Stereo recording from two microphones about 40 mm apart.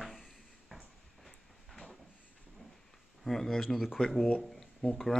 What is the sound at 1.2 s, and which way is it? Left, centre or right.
Train, centre.